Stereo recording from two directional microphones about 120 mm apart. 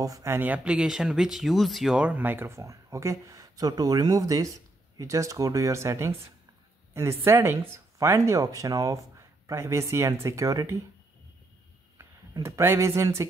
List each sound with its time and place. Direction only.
0.0 s speech: 25° right (ahead or behind)
6.9 s a sound: 25° right (ahead or behind)
7.2 s speech: 20° right (ahead or behind)
12.0 s speech: 25° right (ahead or behind)